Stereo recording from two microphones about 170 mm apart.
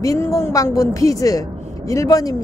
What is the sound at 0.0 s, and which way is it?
Speech, 20° left (ahead or behind).